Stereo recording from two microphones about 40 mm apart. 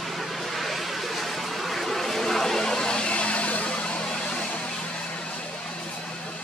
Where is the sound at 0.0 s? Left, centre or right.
Centre; by 5.3 s left.